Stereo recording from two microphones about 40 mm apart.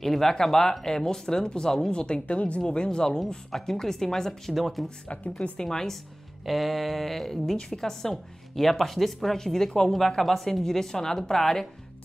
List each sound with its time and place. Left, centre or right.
0.0 s speech: centre
5.0 s a woman's voice: left
5.6 s speech: centre
6.4 s a sound: centre
7.5 s speech: centre